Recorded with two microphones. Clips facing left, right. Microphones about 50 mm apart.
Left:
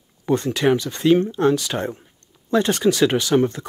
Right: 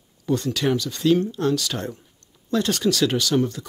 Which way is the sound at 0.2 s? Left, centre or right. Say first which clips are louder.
Left 4 dB; left.